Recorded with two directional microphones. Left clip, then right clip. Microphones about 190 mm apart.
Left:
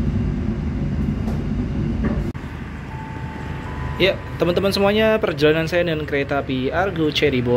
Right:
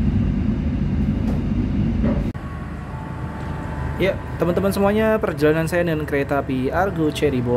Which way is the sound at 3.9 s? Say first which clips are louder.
Left 3 dB; 5° right (ahead or behind).